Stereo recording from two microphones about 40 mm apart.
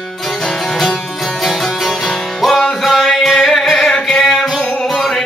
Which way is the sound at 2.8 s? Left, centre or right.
Centre.